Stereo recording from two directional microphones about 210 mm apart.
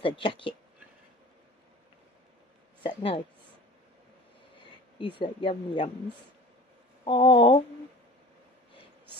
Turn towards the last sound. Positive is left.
turn(degrees=25)  # may be behind; listen again after turning